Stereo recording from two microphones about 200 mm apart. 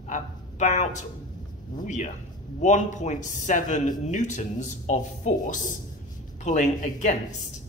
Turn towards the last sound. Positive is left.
turn(degrees=35)  # may be behind; listen again after turning